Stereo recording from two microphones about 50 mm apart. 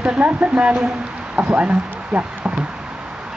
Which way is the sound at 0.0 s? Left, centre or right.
Right.